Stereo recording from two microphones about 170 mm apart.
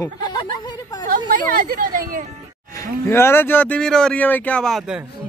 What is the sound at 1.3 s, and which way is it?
Music, 55° right (ahead or behind).